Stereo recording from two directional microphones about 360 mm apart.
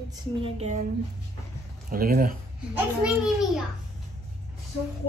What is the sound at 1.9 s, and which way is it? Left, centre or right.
Speech, right.